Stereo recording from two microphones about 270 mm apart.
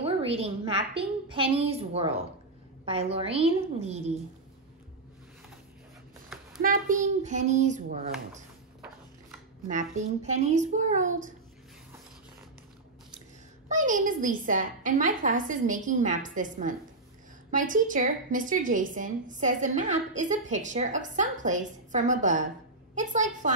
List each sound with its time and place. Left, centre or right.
0.0 s a woman's voice: right
6.6 s a woman's voice: right
9.9 s a woman's voice: right
13.7 s a woman's voice: right